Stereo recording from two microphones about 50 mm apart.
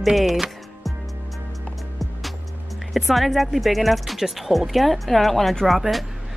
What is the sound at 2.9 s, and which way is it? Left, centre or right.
Speech, centre.